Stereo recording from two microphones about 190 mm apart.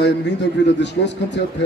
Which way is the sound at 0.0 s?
65° left (ahead or behind).